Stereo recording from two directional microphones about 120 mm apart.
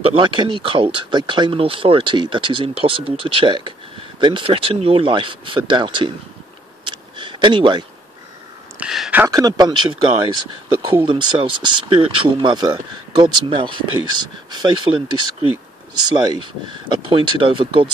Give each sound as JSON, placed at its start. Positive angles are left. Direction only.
{"t": 0.0, "sound": "speech", "side_deg": -45}
{"t": 6.8, "sound": "a sound", "side_deg": -40}
{"t": 8.7, "sound": "speech", "side_deg": -5}
{"t": 9.3, "sound": "speech", "side_deg": -30}
{"t": 16.2, "sound": "speech", "side_deg": -35}